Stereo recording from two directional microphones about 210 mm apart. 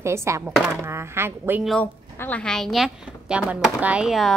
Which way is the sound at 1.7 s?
5° left (ahead or behind).